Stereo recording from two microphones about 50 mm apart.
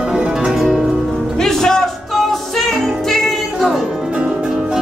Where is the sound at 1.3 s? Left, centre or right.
Centre.